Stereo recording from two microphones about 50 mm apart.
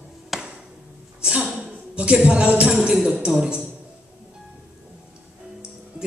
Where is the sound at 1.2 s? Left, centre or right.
Centre.